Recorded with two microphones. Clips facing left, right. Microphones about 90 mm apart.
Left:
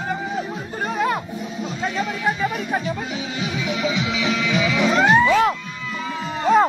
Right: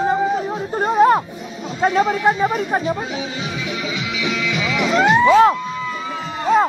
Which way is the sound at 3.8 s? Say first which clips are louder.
Left 3 dB; 20° left (ahead or behind).